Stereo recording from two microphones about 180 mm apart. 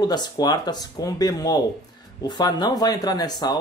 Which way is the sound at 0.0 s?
20° left (ahead or behind).